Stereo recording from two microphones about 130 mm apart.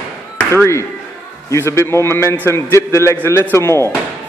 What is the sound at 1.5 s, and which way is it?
Speech, 20° left (ahead or behind).